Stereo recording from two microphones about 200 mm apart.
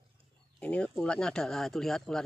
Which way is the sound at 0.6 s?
5° left (ahead or behind).